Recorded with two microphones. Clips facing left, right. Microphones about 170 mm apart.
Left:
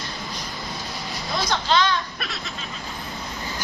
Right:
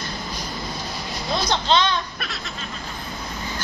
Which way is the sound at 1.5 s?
20° right (ahead or behind).